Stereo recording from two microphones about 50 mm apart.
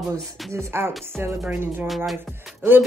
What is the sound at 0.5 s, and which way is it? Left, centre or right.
Speech, right.